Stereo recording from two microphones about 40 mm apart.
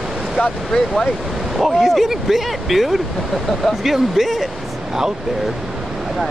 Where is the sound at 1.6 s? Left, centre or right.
Centre.